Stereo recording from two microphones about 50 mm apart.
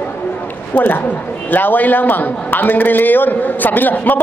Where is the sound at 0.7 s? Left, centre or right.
Left.